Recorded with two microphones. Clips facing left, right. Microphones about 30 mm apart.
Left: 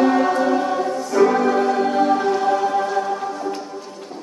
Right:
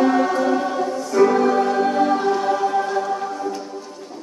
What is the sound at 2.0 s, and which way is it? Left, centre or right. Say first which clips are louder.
Music: left 1 dB; centre.